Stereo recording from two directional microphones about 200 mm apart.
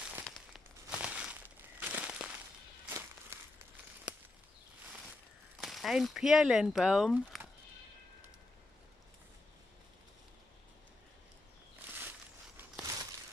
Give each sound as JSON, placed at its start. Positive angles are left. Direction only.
{"t": 0.0, "sound": "a sound", "side_deg": -5}
{"t": 5.6, "sound": "speech", "side_deg": 0}
{"t": 12.8, "sound": "crumpling", "side_deg": -15}